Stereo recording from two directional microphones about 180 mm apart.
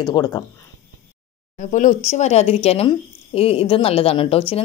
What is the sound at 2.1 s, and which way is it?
A woman's voice, 35° left (ahead or behind).